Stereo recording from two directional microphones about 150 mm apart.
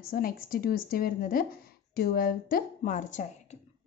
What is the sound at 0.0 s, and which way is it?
A woman's voice, 75° left (ahead or behind).